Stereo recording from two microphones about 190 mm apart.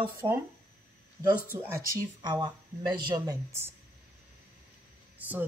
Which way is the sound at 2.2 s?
25° right (ahead or behind).